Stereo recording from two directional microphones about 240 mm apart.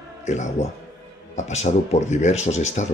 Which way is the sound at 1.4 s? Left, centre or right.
Left.